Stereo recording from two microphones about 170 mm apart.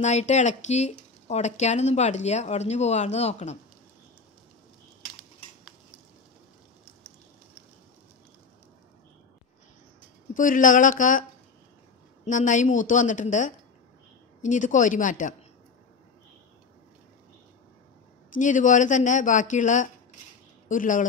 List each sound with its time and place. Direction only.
0.0 s speech: 40° left (ahead or behind)
10.3 s speech: 50° left (ahead or behind)
12.3 s speech: 45° left (ahead or behind)
18.3 s speech: 50° left (ahead or behind)